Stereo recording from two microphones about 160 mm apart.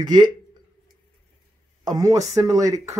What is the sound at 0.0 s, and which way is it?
Speech, 25° right (ahead or behind).